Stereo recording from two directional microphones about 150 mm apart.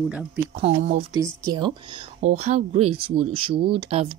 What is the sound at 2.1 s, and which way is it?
Speech, 50° right (ahead or behind).